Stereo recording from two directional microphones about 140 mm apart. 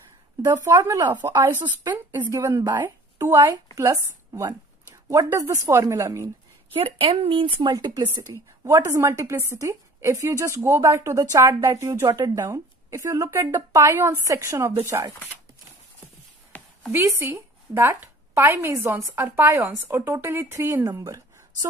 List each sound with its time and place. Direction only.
0.4 s a woman's voice: 25° right (ahead or behind)
6.7 s speech: 40° right (ahead or behind)
8.6 s a woman's voice: 20° right (ahead or behind)
16.5 s a sound: 10° left (ahead or behind)
16.9 s a woman's voice: 15° right (ahead or behind)
20.9 s a sound: 25° right (ahead or behind)